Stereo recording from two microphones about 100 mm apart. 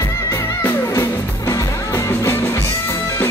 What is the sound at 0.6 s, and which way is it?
Music, 25° left (ahead or behind).